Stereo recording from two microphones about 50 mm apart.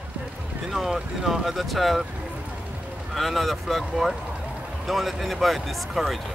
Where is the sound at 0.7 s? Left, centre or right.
Centre.